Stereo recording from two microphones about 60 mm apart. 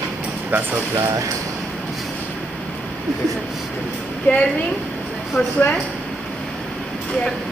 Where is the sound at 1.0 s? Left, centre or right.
Right.